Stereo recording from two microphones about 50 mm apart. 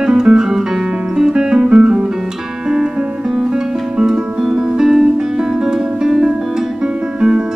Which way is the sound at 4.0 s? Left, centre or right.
Centre.